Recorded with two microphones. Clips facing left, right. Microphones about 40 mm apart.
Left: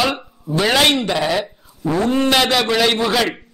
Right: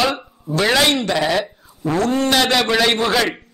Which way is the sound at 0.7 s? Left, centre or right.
Left.